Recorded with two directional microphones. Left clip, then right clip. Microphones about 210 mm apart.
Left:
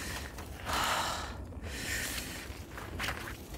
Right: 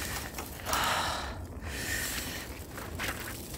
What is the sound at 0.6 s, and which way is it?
Snort, centre (ahead or behind).